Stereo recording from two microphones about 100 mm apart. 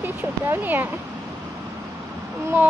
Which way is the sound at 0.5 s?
20° right (ahead or behind).